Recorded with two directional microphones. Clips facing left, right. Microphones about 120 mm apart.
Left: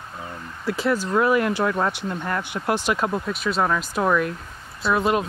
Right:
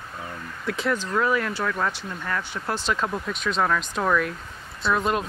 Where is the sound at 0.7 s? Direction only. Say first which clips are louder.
Left 3 dB; 5° left (ahead or behind).